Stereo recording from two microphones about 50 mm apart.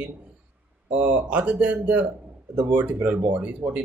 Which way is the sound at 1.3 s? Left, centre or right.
Right.